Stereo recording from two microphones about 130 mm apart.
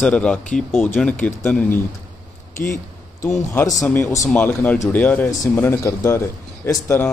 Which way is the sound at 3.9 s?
20° left (ahead or behind).